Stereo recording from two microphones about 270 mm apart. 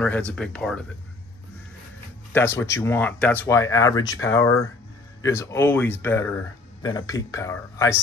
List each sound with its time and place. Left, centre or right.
0.0 s speech: centre
2.3 s speech: centre